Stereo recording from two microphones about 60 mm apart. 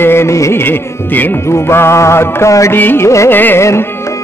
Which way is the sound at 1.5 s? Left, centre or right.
Left.